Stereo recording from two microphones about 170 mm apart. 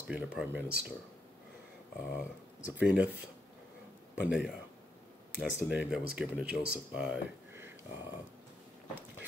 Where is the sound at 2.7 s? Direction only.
10° right (ahead or behind).